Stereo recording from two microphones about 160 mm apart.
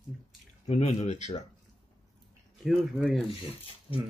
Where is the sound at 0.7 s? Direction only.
40° left (ahead or behind).